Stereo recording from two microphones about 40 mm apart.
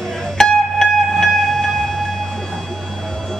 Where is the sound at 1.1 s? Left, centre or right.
Centre.